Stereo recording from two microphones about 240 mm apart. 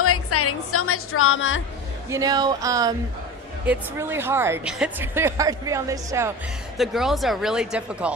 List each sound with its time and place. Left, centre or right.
0.0 s a woman's voice: left
2.0 s a woman's voice: centre
6.8 s speech: centre